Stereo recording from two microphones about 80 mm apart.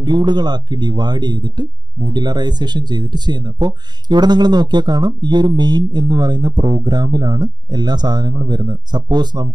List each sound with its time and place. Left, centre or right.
0.0 s speech: right